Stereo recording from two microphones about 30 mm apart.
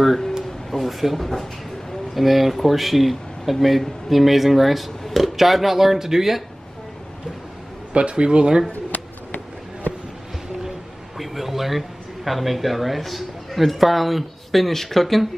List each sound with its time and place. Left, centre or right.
0.7 s speech: centre
7.9 s speech: right
11.1 s a sound: centre
12.3 s speech: centre